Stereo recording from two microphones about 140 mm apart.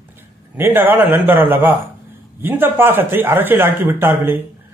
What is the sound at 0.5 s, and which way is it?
A man's voice, 15° right (ahead or behind).